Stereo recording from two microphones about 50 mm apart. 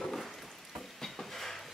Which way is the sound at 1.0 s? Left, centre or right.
Centre.